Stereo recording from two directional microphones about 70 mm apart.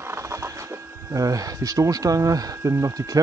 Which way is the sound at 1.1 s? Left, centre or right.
Right.